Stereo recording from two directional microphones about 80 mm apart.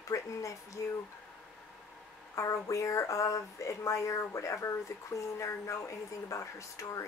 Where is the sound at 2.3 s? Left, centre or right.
Left.